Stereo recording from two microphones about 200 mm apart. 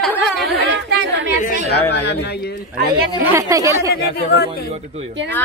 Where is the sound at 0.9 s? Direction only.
60° right (ahead or behind).